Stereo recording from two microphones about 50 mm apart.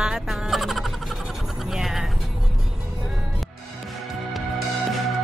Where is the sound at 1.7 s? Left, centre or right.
Centre.